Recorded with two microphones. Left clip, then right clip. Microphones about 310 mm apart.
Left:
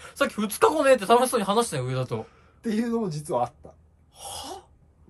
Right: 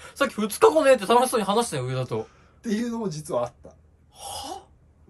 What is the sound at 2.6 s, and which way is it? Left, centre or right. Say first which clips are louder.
Speech: left 2 dB; left.